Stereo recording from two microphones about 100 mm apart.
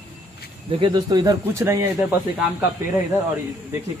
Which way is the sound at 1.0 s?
40° right (ahead or behind).